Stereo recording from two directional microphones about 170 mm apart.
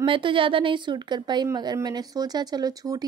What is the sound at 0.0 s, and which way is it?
Speech, 30° right (ahead or behind).